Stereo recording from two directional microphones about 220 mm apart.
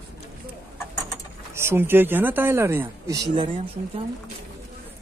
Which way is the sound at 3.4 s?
25° right (ahead or behind).